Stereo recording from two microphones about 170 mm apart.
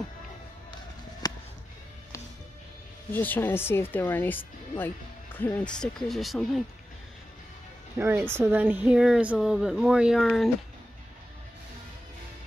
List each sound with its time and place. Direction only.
1.2 s music: 25° left (ahead or behind)
3.1 s speech: 10° left (ahead or behind)
8.0 s speech: 15° right (ahead or behind)